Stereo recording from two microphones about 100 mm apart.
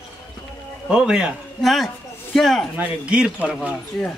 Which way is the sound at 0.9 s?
10° right (ahead or behind).